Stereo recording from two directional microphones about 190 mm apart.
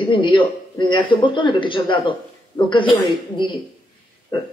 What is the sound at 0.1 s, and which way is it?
A woman's voice, 25° left (ahead or behind).